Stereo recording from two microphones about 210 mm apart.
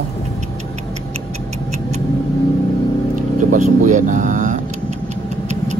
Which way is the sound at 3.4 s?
35° right (ahead or behind).